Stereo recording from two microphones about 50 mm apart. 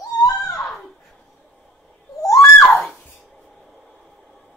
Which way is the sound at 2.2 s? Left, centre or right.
Left.